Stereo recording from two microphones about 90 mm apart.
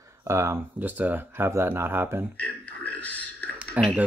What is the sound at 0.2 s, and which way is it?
Speech, 30° right (ahead or behind).